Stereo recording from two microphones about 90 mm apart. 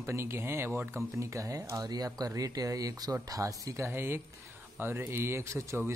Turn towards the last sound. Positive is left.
turn(degrees=-35)  # may be behind; listen again after turning